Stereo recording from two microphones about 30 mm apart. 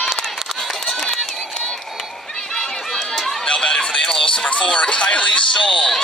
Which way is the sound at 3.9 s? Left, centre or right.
Centre.